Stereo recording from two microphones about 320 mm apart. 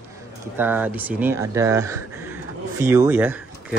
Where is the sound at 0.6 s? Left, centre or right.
Centre.